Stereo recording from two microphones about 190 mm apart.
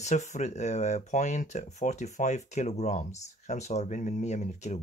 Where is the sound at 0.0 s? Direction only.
35° left (ahead or behind).